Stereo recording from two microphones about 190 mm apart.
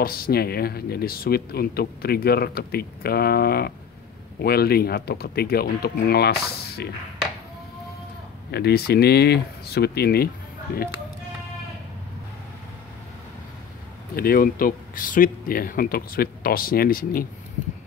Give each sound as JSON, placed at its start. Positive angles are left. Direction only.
{"t": 0.0, "sound": "speech", "side_deg": 50}
{"t": 8.5, "sound": "speech", "side_deg": 55}
{"t": 14.1, "sound": "speech", "side_deg": 50}